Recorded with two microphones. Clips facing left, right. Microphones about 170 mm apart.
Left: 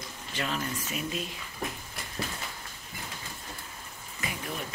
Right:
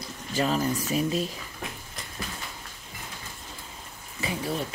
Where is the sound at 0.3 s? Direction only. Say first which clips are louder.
Right 8 dB; 40° right (ahead or behind).